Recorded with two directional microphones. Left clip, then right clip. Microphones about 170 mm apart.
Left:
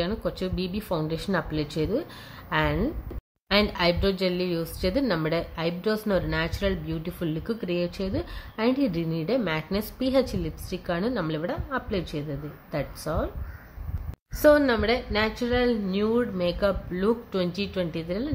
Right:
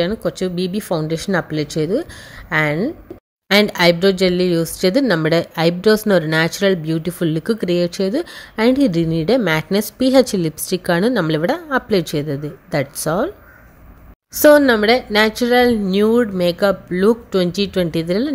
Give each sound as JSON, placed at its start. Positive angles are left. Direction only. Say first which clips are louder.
{"t": 0.0, "sound": "a woman's voice", "louder": "right 9 dB", "side_deg": -40}
{"t": 14.4, "sound": "a woman's voice", "louder": "right 9 dB", "side_deg": -50}